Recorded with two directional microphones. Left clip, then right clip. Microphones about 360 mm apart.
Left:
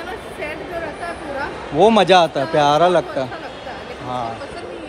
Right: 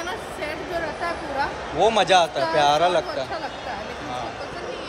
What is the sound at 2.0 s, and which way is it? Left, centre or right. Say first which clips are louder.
A man's voice: left 5 dB; centre.